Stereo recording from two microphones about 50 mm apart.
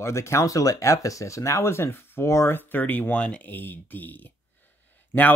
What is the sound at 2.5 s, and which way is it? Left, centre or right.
Speech, left.